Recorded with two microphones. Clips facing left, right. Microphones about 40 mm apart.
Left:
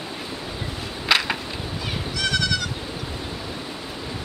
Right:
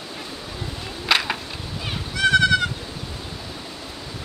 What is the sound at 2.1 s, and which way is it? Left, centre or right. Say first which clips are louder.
Goat: right 8 dB; right.